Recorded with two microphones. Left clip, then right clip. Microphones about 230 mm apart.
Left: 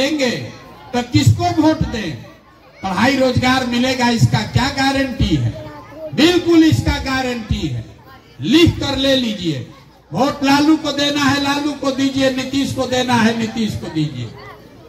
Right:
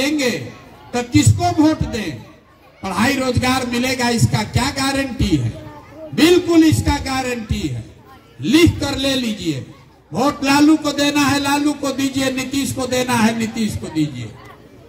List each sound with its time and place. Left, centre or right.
0.0 s a man's voice: right